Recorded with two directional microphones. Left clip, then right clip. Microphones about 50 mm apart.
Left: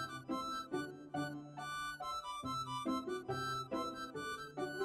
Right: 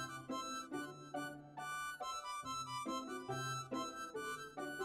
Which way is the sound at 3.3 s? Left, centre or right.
Left.